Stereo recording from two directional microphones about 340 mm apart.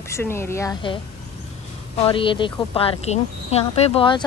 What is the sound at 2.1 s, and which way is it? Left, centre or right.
Speech, centre.